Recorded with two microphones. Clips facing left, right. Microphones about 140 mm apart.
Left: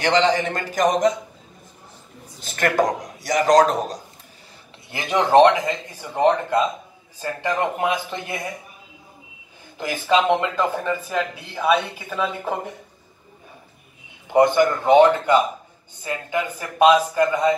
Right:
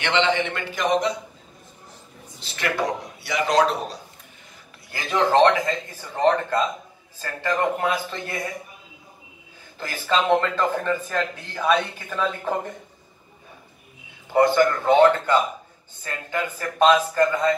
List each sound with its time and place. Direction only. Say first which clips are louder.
0.0 s a man's voice: left 3 dB; 40° left (ahead or behind)
2.4 s speech: left 5 dB; 50° left (ahead or behind)
4.9 s speech: left 4 dB; 15° left (ahead or behind)
9.8 s speech: left 4 dB; 15° left (ahead or behind)
14.3 s speech: left 2 dB; 15° left (ahead or behind)